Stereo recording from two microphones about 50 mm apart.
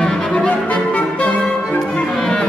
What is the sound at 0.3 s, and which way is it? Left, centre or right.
Music, left.